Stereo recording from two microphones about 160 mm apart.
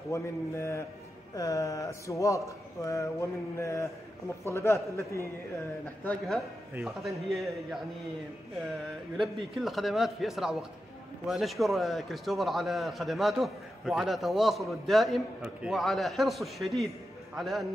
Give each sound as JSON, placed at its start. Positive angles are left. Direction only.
{"t": 0.1, "sound": "a man's voice", "side_deg": 20}
{"t": 6.0, "sound": "a man's voice", "side_deg": 0}
{"t": 9.1, "sound": "a man's voice", "side_deg": 0}